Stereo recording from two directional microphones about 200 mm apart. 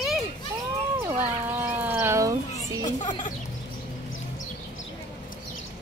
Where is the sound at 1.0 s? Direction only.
10° right (ahead or behind).